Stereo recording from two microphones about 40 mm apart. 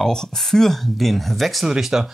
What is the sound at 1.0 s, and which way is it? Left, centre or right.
Speech, centre.